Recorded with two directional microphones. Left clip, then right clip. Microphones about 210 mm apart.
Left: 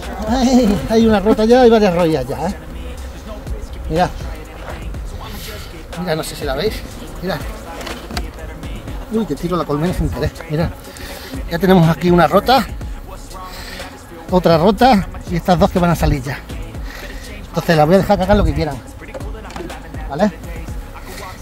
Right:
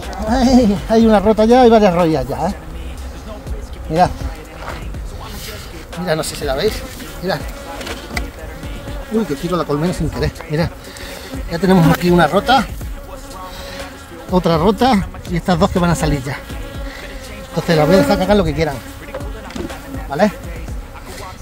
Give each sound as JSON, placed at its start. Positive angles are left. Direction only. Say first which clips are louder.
{"t": 0.0, "sound": "speech", "louder": "right 1 dB", "side_deg": -5}
{"t": 6.0, "sound": "speech", "louder": "right 2 dB", "side_deg": -25}
{"t": 9.2, "sound": "speech", "louder": "even", "side_deg": 5}
{"t": 11.5, "sound": "speech", "louder": "even", "side_deg": 20}
{"t": 14.3, "sound": "speech", "louder": "left 2 dB", "side_deg": 15}
{"t": 17.6, "sound": "speech", "louder": "even", "side_deg": 20}